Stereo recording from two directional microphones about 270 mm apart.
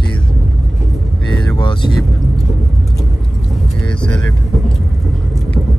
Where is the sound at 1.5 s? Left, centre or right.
Centre.